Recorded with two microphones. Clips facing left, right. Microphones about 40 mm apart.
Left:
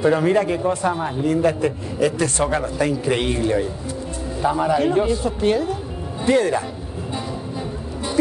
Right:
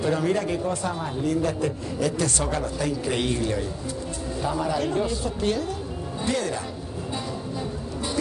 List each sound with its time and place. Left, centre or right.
0.0 s speech: left